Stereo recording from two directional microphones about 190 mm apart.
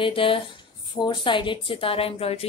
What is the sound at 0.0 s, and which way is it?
A woman's voice, 25° left (ahead or behind).